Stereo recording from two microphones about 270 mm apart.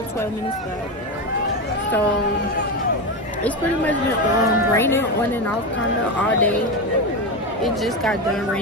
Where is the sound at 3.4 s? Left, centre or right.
Centre.